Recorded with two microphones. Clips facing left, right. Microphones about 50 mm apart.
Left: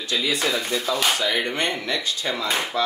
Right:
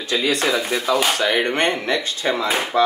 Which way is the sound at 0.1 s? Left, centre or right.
Centre.